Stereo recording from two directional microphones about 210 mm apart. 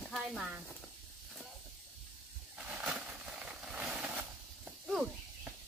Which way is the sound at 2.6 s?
5° right (ahead or behind).